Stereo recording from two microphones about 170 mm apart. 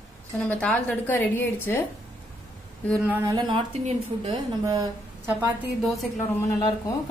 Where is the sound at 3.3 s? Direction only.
25° right (ahead or behind).